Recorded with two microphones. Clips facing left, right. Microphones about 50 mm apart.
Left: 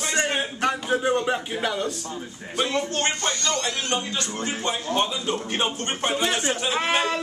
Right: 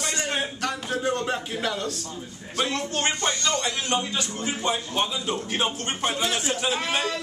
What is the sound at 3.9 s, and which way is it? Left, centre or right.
A man's voice, centre.